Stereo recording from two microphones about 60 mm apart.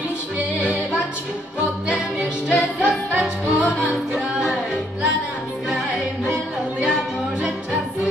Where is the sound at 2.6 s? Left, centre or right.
Centre.